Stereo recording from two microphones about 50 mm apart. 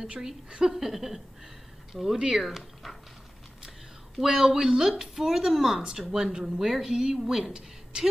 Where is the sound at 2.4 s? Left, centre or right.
Centre.